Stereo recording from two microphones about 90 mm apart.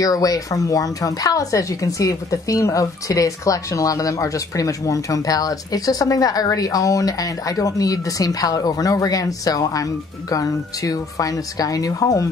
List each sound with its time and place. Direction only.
0.0 s speech: 40° left (ahead or behind)